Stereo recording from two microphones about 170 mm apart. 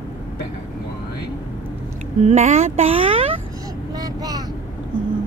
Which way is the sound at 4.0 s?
20° right (ahead or behind).